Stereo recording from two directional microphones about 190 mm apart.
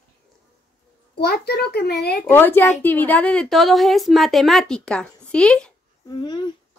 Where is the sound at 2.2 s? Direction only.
10° left (ahead or behind).